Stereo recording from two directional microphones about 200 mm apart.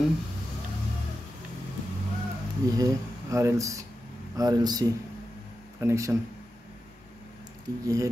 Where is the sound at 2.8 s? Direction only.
15° right (ahead or behind).